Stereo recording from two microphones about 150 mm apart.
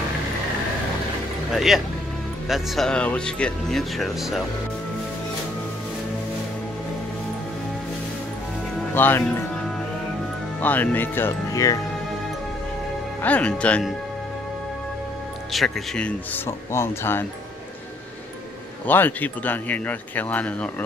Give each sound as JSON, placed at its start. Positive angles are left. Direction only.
{"t": 1.5, "sound": "speech", "side_deg": 0}
{"t": 8.9, "sound": "speech", "side_deg": 15}
{"t": 10.6, "sound": "speech", "side_deg": 10}
{"t": 13.2, "sound": "speech", "side_deg": 10}
{"t": 15.5, "sound": "speech", "side_deg": 0}
{"t": 16.4, "sound": "speech", "side_deg": 15}
{"t": 18.9, "sound": "speech", "side_deg": 10}